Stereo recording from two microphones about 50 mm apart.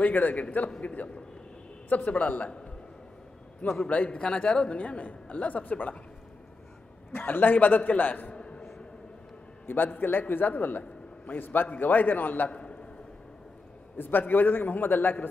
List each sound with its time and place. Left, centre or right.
0.0 s a man's voice: left
3.9 s a man's voice: left
7.1 s a man's voice: left
8.4 s a sound: centre
9.7 s a man's voice: left
12.4 s a man's voice: left
13.9 s a man's voice: left